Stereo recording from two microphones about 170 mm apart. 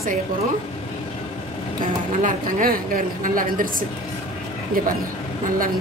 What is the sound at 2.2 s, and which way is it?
A woman's voice, 55° right (ahead or behind).